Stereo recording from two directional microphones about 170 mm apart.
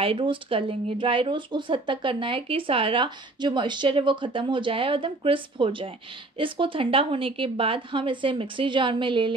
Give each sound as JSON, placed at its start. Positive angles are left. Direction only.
{"t": 0.0, "sound": "speech", "side_deg": -30}